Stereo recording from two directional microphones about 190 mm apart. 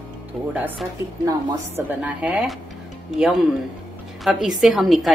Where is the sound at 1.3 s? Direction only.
20° right (ahead or behind).